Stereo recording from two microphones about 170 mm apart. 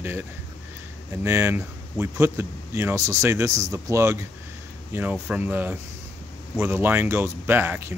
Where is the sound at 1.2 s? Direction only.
15° right (ahead or behind).